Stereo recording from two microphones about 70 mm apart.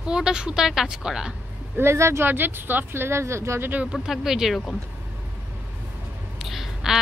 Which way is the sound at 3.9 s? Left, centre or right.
Centre.